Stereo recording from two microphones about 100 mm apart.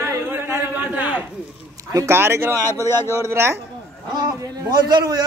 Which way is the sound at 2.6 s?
25° left (ahead or behind).